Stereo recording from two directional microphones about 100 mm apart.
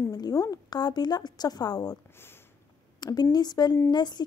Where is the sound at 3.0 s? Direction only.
45° left (ahead or behind).